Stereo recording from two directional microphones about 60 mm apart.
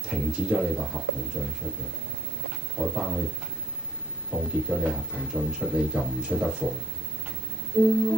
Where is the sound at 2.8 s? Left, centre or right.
Centre.